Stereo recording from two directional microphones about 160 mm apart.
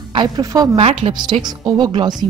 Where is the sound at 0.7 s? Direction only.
35° right (ahead or behind).